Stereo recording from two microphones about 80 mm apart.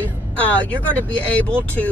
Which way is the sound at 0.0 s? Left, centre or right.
Centre.